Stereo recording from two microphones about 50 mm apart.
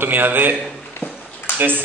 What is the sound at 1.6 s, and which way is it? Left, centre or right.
Speech, right.